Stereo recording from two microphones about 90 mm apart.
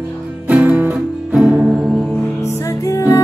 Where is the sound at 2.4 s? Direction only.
35° left (ahead or behind).